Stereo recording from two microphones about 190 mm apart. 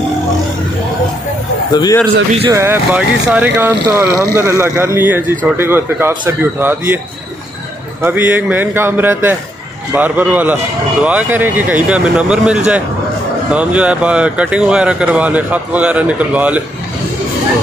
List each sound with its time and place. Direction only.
1.7 s a man's voice: 20° left (ahead or behind)
2.5 s speech: 10° right (ahead or behind)
8.0 s speech: 10° right (ahead or behind)